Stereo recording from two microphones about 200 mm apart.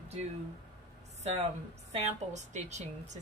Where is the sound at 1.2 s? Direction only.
35° right (ahead or behind).